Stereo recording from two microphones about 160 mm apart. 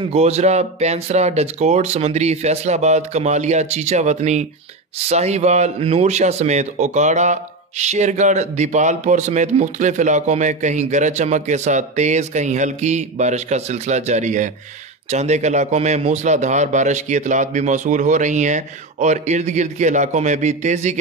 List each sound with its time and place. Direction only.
0.1 s speech: 40° right (ahead or behind)